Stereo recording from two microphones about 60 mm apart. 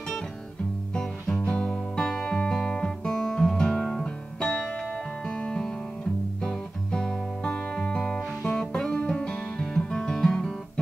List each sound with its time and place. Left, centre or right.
1.4 s guitar: centre
3.2 s music: centre